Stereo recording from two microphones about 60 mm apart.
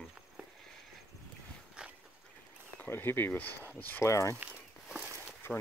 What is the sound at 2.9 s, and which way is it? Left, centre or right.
Speech, left.